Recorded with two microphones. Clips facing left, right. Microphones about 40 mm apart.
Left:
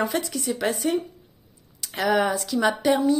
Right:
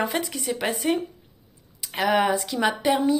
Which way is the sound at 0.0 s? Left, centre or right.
Centre.